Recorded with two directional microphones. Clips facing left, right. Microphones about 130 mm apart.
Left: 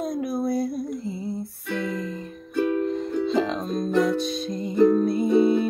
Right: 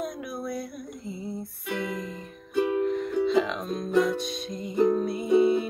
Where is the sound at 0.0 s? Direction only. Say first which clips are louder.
Left 7 dB; 30° left (ahead or behind).